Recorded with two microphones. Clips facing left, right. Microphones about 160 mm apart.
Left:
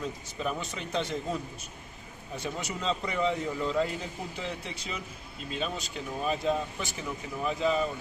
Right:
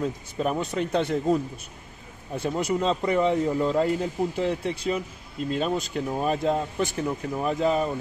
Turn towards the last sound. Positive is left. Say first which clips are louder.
# right 4 dB
turn(degrees=-50)  # may be behind; listen again after turning